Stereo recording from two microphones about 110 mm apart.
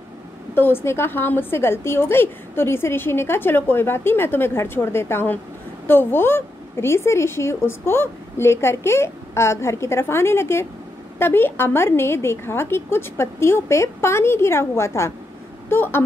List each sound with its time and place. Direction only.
0.6 s a woman's voice: 20° left (ahead or behind)